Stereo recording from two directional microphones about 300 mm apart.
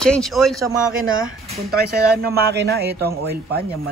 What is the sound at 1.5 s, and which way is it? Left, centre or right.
Speech, right.